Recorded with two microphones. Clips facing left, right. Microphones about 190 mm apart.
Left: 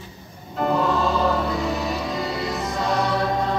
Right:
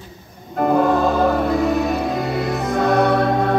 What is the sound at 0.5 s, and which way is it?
Music, 50° right (ahead or behind).